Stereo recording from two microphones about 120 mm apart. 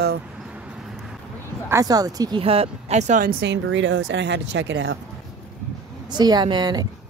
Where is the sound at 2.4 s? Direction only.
55° right (ahead or behind); by 3.2 s 75° right (ahead or behind).